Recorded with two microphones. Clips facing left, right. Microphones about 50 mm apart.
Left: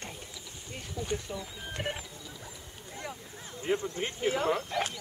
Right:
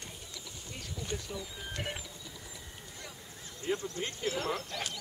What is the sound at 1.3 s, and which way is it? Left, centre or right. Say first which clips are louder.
Speech: left 2 dB; left.